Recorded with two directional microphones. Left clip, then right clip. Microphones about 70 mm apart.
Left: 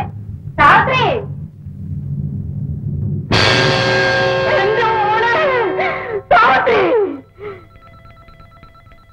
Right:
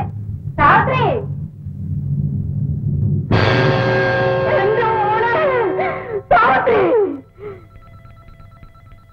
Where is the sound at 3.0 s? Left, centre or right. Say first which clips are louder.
Left 4 dB; left.